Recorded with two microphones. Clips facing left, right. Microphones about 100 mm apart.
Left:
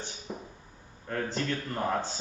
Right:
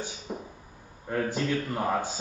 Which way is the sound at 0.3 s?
15° right (ahead or behind).